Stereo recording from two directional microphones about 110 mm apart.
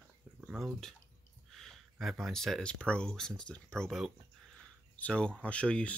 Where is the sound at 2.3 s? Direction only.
5° left (ahead or behind).